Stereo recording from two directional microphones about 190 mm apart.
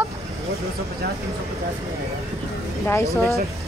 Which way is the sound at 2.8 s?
15° left (ahead or behind).